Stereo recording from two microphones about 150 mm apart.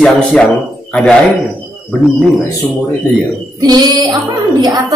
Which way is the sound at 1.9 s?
Centre (ahead or behind).